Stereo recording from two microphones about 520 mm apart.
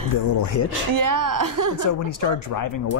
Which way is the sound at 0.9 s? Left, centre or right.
Right.